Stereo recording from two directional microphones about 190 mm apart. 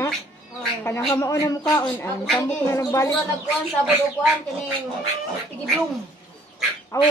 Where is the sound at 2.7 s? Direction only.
15° left (ahead or behind).